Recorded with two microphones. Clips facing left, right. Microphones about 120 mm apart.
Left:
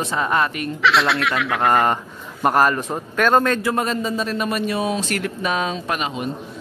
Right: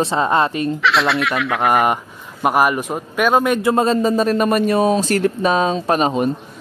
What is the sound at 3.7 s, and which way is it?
Speech, 30° right (ahead or behind).